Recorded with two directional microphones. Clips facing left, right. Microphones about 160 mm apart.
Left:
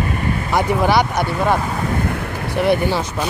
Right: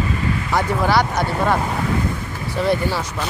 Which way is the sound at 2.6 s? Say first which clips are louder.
Left 3 dB; 20° left (ahead or behind).